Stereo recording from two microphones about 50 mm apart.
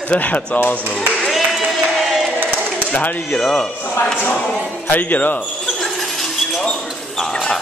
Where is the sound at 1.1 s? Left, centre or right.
Centre.